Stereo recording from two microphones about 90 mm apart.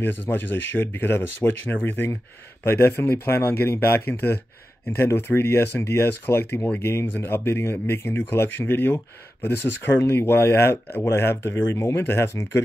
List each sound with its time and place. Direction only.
0.0 s speech: 20° left (ahead or behind)